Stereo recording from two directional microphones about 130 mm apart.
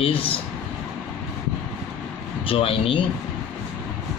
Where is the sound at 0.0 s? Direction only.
45° left (ahead or behind).